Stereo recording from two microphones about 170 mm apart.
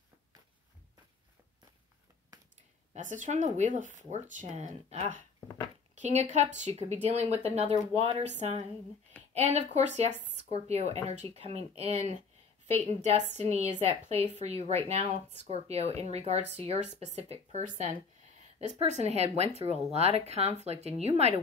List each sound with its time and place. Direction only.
2.9 s speech: 45° right (ahead or behind)